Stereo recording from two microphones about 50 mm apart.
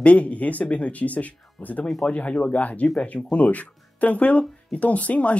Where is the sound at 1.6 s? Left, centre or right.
Centre.